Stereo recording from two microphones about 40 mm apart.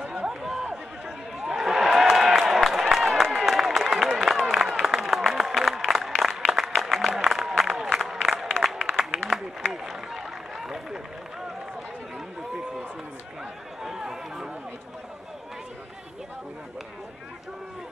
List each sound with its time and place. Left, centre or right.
0.0 s chatter: right
0.3 s chatter: centre
1.0 s a sound: centre
4.6 s applause: centre
8.7 s a sound: centre
13.8 s run: centre